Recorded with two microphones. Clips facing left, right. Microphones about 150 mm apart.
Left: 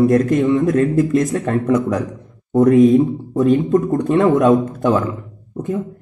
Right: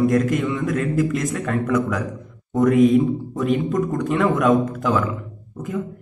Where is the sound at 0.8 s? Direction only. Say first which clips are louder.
Left 6 dB; 25° left (ahead or behind).